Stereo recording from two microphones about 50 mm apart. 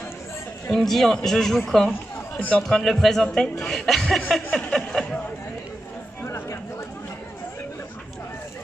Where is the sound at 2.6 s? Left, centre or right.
Centre.